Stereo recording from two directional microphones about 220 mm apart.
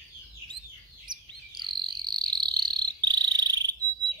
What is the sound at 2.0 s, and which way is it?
Cricket, 20° right (ahead or behind).